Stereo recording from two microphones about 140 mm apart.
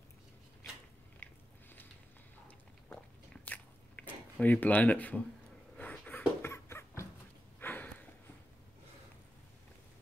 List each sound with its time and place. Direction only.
1.2 s biting: 15° left (ahead or behind)
3.4 s biting: 10° left (ahead or behind)
5.8 s a sound: 10° left (ahead or behind)